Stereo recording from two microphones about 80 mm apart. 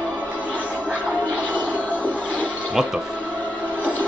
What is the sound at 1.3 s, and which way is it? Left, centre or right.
Music, centre.